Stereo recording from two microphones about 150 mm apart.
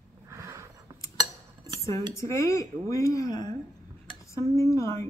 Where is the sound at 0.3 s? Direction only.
20° right (ahead or behind).